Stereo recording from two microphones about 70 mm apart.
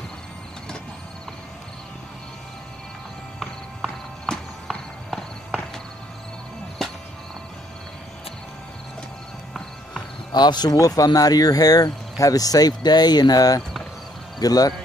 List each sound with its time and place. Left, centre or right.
4.3 s music: centre
10.3 s speech: left
10.8 s speech: left